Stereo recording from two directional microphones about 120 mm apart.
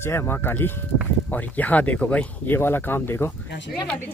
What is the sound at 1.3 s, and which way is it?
Speech, 15° left (ahead or behind).